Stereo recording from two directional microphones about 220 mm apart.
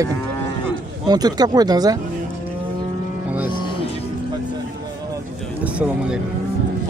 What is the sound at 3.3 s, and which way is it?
Music, 5° right (ahead or behind).